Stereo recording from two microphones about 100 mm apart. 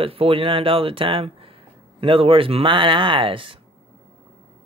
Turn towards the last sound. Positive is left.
turn(degrees=-60)  # may be behind; listen again after turning